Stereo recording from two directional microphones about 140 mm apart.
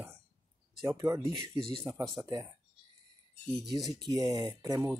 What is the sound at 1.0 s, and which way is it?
Speech, 20° right (ahead or behind).